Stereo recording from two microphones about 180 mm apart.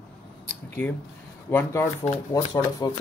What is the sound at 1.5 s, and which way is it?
Speech, 10° left (ahead or behind).